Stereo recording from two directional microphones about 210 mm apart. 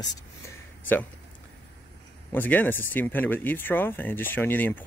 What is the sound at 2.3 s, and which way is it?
Speech, 10° left (ahead or behind).